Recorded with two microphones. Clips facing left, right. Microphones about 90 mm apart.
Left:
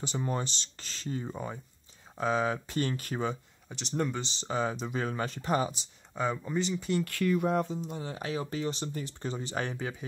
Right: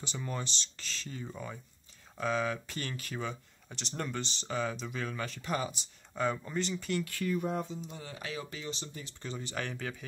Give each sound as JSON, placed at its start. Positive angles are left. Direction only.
{"t": 0.0, "sound": "speech", "side_deg": 35}
{"t": 3.6, "sound": "speech", "side_deg": 10}
{"t": 4.2, "sound": "speech", "side_deg": 30}
{"t": 6.1, "sound": "speech", "side_deg": 10}
{"t": 6.8, "sound": "speech", "side_deg": 25}
{"t": 7.1, "sound": "speech", "side_deg": 85}
{"t": 7.7, "sound": "speech", "side_deg": 45}
{"t": 8.0, "sound": "speech", "side_deg": 30}
{"t": 8.6, "sound": "speech", "side_deg": 50}